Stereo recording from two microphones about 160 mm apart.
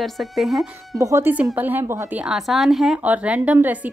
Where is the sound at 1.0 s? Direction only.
15° right (ahead or behind).